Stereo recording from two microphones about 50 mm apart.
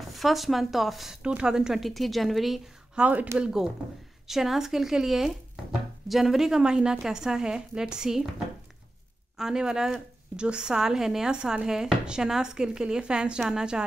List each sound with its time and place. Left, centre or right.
0.1 s speech: centre
1.2 s speech: centre
1.8 s speech: centre
3.0 s speech: right
3.3 s speech: centre
4.3 s speech: centre
9.4 s speech: centre